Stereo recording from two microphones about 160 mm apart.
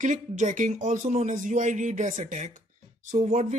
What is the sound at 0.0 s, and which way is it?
A man's voice, 50° right (ahead or behind).